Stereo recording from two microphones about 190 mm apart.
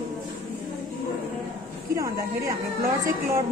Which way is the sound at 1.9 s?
15° right (ahead or behind).